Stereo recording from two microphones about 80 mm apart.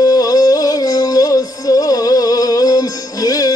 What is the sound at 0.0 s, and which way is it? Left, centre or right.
Music, left.